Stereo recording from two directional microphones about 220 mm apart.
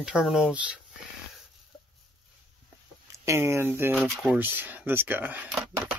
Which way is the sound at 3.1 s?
15° right (ahead or behind).